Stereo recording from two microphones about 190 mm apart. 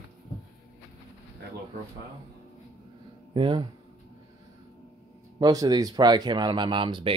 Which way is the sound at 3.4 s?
25° right (ahead or behind).